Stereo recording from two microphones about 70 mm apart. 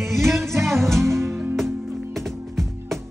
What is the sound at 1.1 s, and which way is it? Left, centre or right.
Music, right.